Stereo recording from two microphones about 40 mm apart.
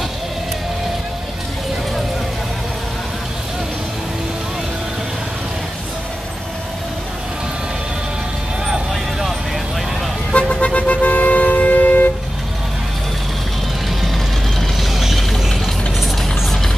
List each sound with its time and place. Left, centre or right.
10.3 s vehicle: left
14.0 s vehicle: centre
14.9 s music: centre
16.2 s vehicle: centre